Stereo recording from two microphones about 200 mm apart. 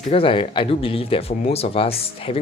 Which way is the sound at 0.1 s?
25° left (ahead or behind).